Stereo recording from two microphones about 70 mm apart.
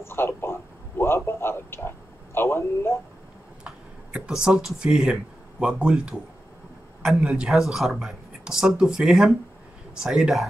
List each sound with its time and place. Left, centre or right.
0.0 s a man's voice: left
3.6 s speech: centre